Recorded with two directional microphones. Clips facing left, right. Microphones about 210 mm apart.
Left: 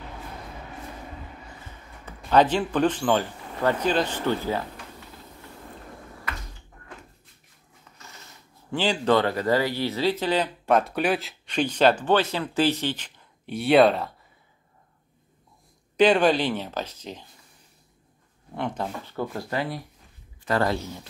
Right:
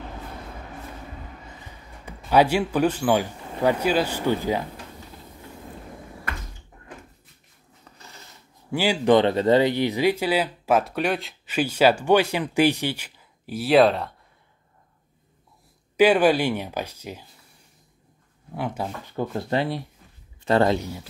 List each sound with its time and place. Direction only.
2.0 s speech: 10° right (ahead or behind)
7.9 s a sound: 35° right (ahead or behind)
8.7 s speech: 10° right (ahead or behind)
16.0 s speech: 10° right (ahead or behind)
18.5 s speech: 5° right (ahead or behind)
19.1 s speech: 25° right (ahead or behind)